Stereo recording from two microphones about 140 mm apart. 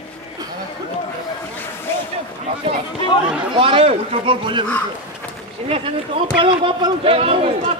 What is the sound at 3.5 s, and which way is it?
A man's voice, 40° right (ahead or behind).